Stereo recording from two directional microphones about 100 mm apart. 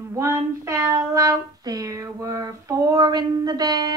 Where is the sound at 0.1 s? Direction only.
30° right (ahead or behind).